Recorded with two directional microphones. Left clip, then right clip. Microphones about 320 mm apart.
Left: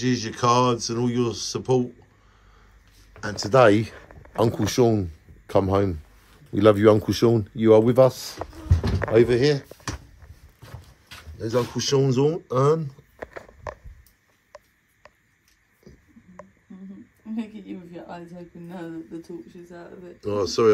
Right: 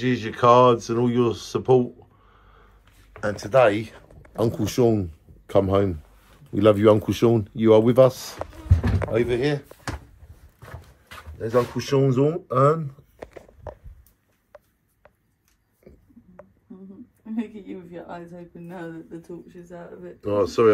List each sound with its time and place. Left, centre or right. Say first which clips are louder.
0.0 s speech: right 3 dB; centre
3.1 s a sound: right 5 dB; centre
3.5 s speech: left 1 dB; left
4.4 s speech: left 1 dB; centre
9.1 s speech: left 5 dB; left
11.3 s speech: right 2 dB; centre
13.2 s a sound: left 4 dB; centre
20.2 s speech: right 2 dB; centre